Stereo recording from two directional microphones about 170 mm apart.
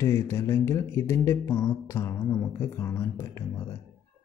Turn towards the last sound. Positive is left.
turn(degrees=15)  # may be behind; listen again after turning